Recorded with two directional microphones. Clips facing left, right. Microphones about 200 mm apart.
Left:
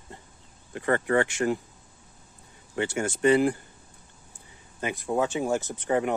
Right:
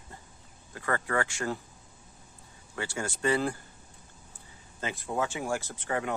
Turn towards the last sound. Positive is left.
turn(degrees=20)  # may be behind; listen again after turning